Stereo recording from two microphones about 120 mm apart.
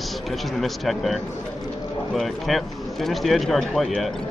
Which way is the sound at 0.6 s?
Centre (ahead or behind).